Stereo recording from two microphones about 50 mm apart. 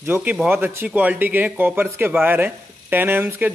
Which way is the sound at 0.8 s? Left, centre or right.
Right.